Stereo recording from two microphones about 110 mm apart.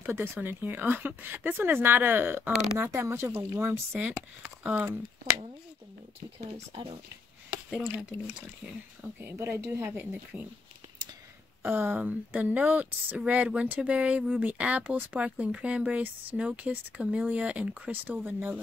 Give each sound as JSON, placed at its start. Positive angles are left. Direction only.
{"t": 0.0, "sound": "speech", "side_deg": -20}
{"t": 7.8, "sound": "speech", "side_deg": -10}
{"t": 11.6, "sound": "speech", "side_deg": -15}